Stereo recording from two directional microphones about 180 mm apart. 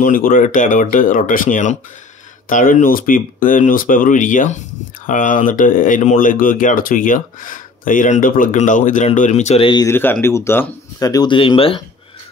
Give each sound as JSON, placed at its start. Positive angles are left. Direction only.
{"t": 0.0, "sound": "speech", "side_deg": 50}
{"t": 9.8, "sound": "speech", "side_deg": 10}